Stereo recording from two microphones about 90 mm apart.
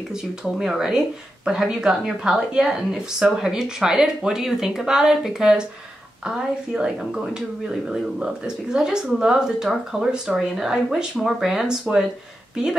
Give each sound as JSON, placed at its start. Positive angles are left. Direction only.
{"t": 0.6, "sound": "a woman's voice", "side_deg": -5}